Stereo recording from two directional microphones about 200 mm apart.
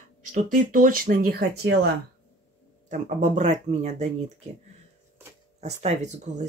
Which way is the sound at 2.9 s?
40° right (ahead or behind).